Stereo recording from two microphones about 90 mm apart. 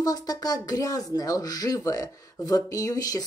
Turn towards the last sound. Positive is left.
turn(degrees=45)  # may be behind; listen again after turning